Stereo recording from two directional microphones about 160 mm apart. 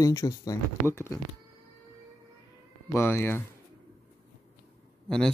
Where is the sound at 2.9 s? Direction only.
15° left (ahead or behind).